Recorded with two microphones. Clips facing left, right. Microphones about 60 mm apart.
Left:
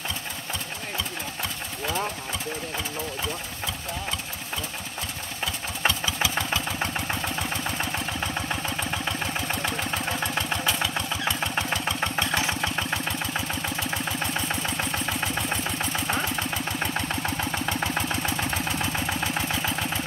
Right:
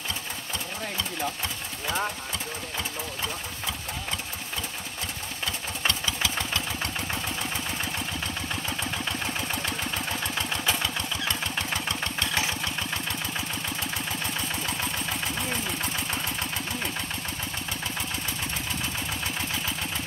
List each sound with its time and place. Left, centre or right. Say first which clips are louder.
5.9 s engine: left 3 dB; centre
9.6 s engine: left 3 dB; left
12.3 s engine: left 3 dB; left
17.5 s engine: left 6 dB; left